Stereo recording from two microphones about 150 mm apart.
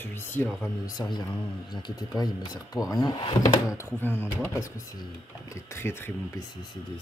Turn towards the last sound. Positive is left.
turn(degrees=15)  # may be behind; listen again after turning